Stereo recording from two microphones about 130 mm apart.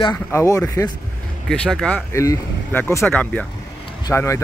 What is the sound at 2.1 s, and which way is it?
Speech, 20° left (ahead or behind).